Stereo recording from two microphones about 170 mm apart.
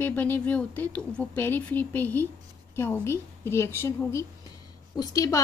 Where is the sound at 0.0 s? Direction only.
10° left (ahead or behind).